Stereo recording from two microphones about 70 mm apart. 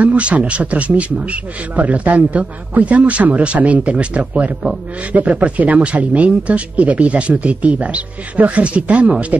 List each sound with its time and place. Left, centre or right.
0.0 s a man's voice: centre